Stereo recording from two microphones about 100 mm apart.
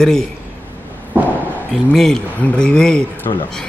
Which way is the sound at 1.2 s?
20° right (ahead or behind).